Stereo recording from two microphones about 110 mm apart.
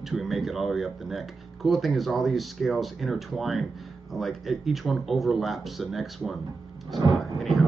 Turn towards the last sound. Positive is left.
turn(degrees=0)  # may be behind; listen again after turning